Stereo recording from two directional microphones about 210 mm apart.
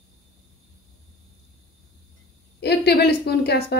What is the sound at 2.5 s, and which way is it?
A woman's voice, 50° left (ahead or behind).